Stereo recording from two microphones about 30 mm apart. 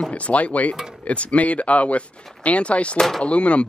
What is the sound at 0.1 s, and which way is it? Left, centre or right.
Speech, left.